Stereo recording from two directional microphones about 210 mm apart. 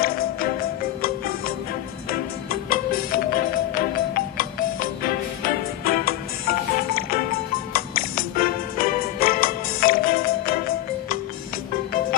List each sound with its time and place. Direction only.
0.0 s music: 45° left (ahead or behind)